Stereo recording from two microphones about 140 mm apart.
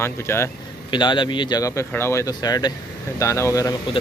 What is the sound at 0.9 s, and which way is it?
Speech, 35° left (ahead or behind).